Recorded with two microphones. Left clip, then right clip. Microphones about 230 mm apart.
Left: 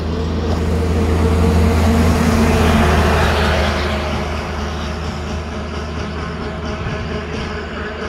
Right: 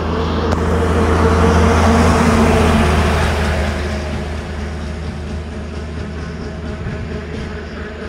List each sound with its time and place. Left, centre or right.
0.1 s vehicle: right
2.6 s vehicle: centre
3.3 s a sound: left